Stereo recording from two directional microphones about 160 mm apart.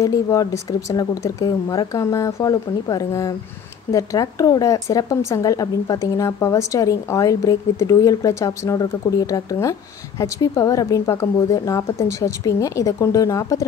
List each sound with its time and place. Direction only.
0.0 s speech: 20° left (ahead or behind)